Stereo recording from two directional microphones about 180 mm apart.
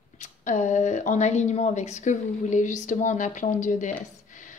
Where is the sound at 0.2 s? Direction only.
40° left (ahead or behind).